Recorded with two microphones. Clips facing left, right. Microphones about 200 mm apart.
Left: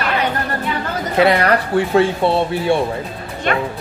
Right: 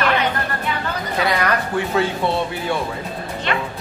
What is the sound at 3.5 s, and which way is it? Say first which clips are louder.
Speech: left 5 dB; 50° left (ahead or behind).